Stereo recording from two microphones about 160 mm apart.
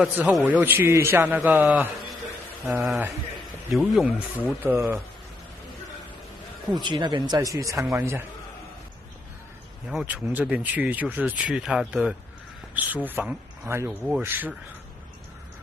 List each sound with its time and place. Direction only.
0.0 s speech: 5° right (ahead or behind)
3.7 s speech: centre (ahead or behind)
4.6 s speech: 15° right (ahead or behind)
6.7 s speech: 30° right (ahead or behind)
9.8 s speech: 5° right (ahead or behind)